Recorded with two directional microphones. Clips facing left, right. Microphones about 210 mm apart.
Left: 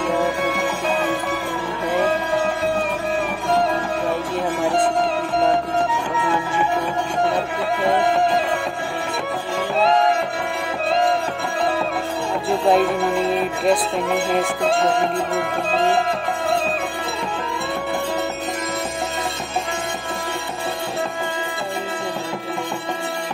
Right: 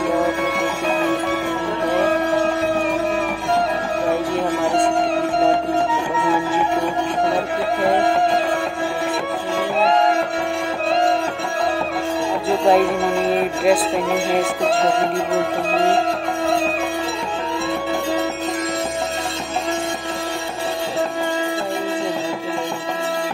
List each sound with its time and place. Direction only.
0.2 s music: centre (ahead or behind)
6.2 s music: centre (ahead or behind)
9.8 s music: centre (ahead or behind)
12.4 s music: centre (ahead or behind)